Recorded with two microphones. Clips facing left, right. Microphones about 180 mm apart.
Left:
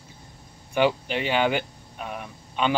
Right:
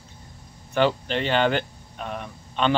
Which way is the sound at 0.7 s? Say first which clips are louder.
Right 1 dB; 10° left (ahead or behind).